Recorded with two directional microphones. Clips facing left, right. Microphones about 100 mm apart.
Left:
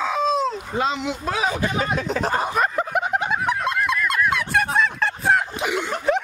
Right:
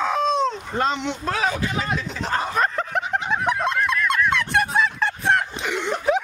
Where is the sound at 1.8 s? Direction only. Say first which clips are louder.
Left 4 dB; 50° left (ahead or behind).